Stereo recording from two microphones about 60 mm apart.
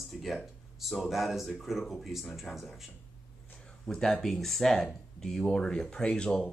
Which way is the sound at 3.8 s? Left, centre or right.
Centre.